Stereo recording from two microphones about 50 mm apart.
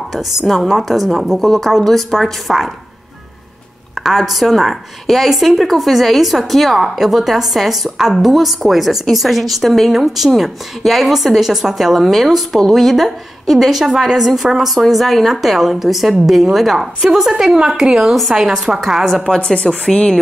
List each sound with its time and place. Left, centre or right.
0.1 s a woman's voice: centre
4.0 s a woman's voice: centre
19.3 s speech: centre